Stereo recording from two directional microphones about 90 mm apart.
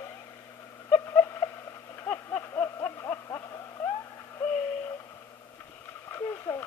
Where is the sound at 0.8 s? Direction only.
25° left (ahead or behind).